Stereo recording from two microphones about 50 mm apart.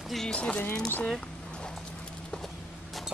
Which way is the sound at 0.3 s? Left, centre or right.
Left.